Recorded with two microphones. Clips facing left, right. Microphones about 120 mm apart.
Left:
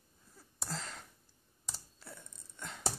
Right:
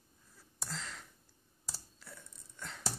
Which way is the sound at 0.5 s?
35° left (ahead or behind).